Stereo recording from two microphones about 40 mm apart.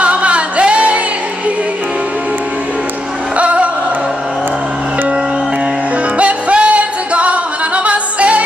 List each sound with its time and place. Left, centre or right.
0.0 s singing: right
3.3 s music: right
6.1 s music: right